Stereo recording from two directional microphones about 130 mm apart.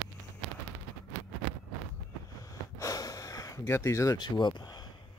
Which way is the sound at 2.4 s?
25° left (ahead or behind).